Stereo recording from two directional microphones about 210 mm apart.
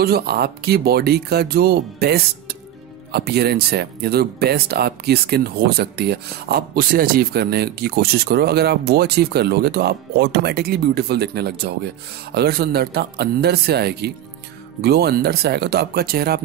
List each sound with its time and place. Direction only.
0.0 s speech: 50° right (ahead or behind)